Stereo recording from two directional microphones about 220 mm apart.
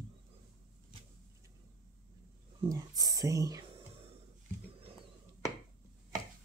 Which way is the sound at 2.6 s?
15° right (ahead or behind).